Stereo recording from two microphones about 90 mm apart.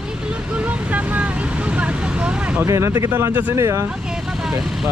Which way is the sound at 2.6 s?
35° right (ahead or behind).